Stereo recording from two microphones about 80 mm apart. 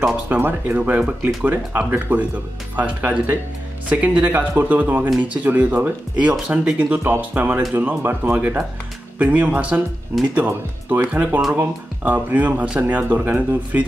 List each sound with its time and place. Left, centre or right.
0.3 s speech: right